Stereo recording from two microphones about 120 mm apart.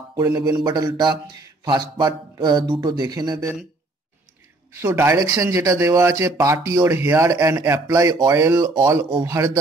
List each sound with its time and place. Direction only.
0.1 s speech: 30° right (ahead or behind)
4.7 s speech: 20° right (ahead or behind)